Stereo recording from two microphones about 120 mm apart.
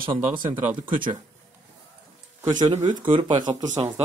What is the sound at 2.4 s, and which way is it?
Speech, 35° right (ahead or behind).